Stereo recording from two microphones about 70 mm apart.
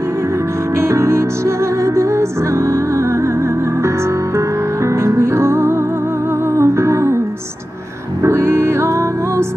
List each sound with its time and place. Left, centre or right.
0.7 s music: right
4.8 s music: right
8.2 s music: right